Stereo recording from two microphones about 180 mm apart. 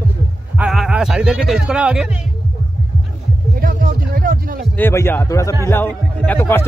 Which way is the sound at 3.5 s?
50° right (ahead or behind).